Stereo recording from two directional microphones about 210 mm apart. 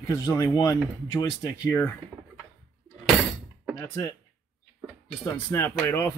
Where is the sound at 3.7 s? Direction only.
15° left (ahead or behind).